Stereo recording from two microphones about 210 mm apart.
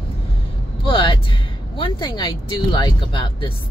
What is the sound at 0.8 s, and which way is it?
Speech, 25° left (ahead or behind).